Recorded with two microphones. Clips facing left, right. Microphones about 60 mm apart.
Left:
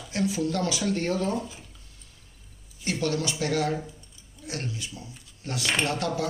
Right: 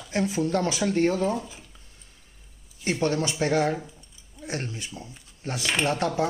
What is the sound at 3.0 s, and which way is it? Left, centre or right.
Speech, right.